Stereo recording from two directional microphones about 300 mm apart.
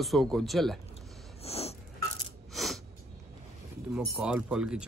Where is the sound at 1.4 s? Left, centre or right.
Centre.